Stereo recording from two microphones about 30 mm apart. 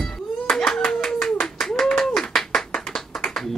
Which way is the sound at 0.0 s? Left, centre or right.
Centre.